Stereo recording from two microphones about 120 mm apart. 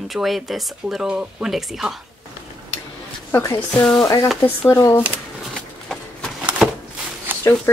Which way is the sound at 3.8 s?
10° left (ahead or behind).